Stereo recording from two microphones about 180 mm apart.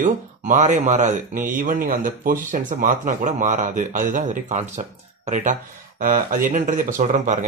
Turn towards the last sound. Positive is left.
turn(degrees=-45)  # may be behind; listen again after turning